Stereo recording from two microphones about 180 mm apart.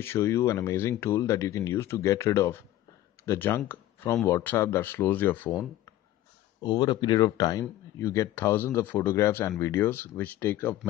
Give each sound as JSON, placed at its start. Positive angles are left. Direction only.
{"t": 0.0, "sound": "speech", "side_deg": 15}
{"t": 6.6, "sound": "speech", "side_deg": 25}